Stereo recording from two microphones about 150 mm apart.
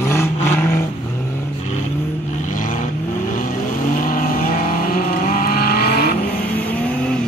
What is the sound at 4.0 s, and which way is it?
Vehicle, 70° left (ahead or behind).